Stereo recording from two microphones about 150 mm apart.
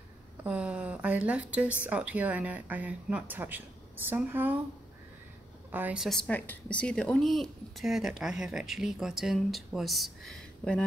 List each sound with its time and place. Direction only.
0.4 s a woman's voice: 10° right (ahead or behind)
5.7 s a woman's voice: 10° right (ahead or behind)
6.0 s a woman's voice: 5° left (ahead or behind)